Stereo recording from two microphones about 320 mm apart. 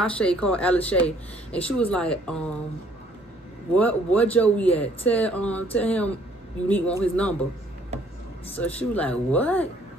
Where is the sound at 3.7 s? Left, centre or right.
Centre.